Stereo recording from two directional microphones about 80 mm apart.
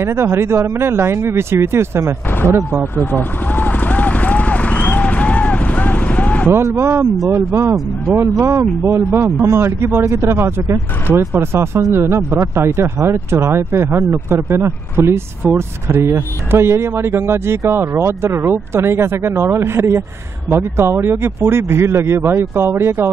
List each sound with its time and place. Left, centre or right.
0.0 s speech: right
3.0 s vehicle: left
6.5 s speech: right